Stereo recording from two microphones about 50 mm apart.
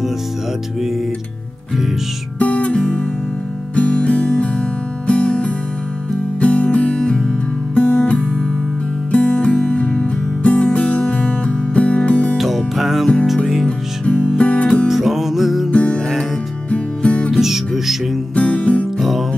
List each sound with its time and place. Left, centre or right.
2.3 s guitar: left
3.7 s music: left
12.4 s music: centre
13.7 s music: left
14.9 s music: centre
15.7 s music: left
17.3 s music: centre
18.3 s music: left
18.9 s music: centre